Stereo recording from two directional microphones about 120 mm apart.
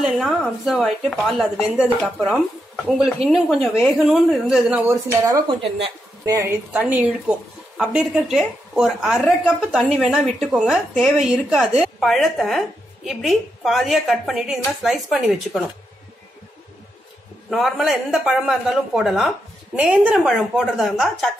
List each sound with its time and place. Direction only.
0.0 s a woman's voice: centre (ahead or behind)
2.2 s a woman's voice: 5° left (ahead or behind)
4.8 s speech: 25° right (ahead or behind)
5.5 s speech: 50° right (ahead or behind)
6.2 s speech: 25° right (ahead or behind)
6.7 s a woman's voice: 15° right (ahead or behind)
17.5 s a woman's voice: centre (ahead or behind)